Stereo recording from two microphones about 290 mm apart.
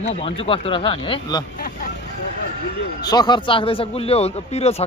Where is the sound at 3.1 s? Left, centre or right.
Centre.